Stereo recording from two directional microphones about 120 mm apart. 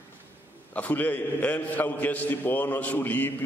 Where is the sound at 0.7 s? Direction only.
15° left (ahead or behind).